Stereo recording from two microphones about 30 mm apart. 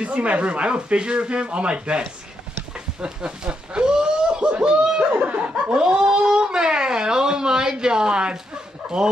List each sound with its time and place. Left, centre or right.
0.0 s speech: right
3.0 s a sound: right
5.7 s speech: right
5.9 s a sound: right
6.2 s speech: right
9.0 s speech: centre